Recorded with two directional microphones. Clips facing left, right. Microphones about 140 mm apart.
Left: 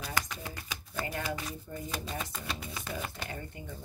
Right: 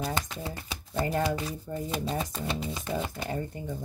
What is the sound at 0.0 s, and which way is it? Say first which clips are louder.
Shuffling cards: right 5 dB; 30° right (ahead or behind).